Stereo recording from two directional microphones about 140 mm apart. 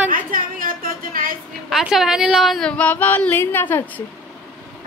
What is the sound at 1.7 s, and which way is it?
Speech, 5° right (ahead or behind).